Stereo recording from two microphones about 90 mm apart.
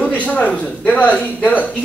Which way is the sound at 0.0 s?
15° left (ahead or behind).